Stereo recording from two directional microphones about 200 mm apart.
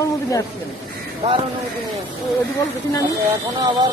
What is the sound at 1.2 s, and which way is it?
Speech, 35° right (ahead or behind).